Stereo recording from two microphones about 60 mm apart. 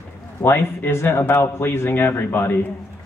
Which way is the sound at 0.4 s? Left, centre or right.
Left.